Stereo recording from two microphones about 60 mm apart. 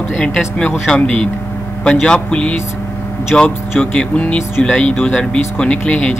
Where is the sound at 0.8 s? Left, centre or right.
Centre.